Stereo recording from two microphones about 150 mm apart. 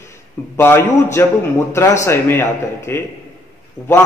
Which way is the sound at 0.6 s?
15° left (ahead or behind).